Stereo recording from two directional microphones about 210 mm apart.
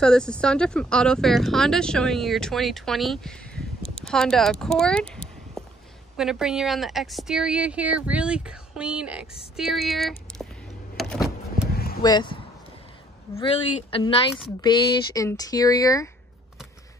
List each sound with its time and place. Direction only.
0.0 s speech: 5° left (ahead or behind)
11.0 s vehicle: centre (ahead or behind)
11.7 s a sound: 45° left (ahead or behind)
12.0 s speech: 20° left (ahead or behind)